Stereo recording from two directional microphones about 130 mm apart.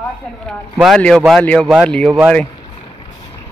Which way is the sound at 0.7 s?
Centre (ahead or behind).